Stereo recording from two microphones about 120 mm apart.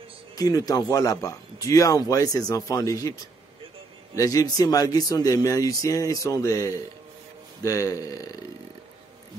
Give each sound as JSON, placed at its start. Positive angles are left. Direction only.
{"t": 0.4, "sound": "speech", "side_deg": 30}